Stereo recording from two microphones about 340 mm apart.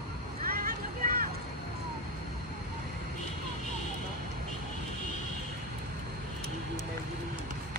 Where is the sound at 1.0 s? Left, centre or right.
Right.